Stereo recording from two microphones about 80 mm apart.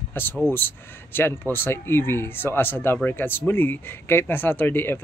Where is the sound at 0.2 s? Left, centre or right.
Left.